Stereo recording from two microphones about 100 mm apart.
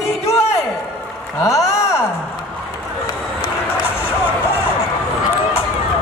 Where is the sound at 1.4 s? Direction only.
30° left (ahead or behind).